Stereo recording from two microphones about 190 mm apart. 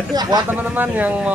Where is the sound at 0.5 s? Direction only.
10° right (ahead or behind).